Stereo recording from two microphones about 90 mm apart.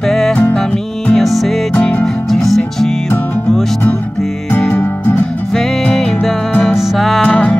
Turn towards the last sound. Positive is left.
turn(degrees=15)  # may be behind; listen again after turning